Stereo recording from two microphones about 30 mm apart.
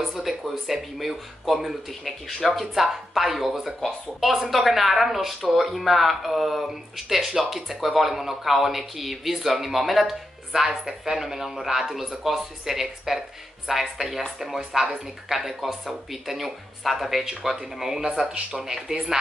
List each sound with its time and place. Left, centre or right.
0.0 s speech: centre
13.7 s speech: centre
17.2 s speech: centre
18.2 s speech: right